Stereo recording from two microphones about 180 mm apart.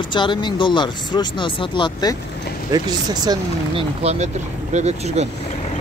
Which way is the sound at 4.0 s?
35° right (ahead or behind).